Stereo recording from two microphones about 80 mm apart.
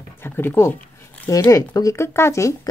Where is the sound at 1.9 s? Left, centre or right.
Left.